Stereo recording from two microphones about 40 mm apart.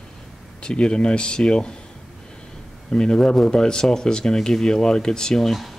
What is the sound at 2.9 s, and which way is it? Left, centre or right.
Speech, centre.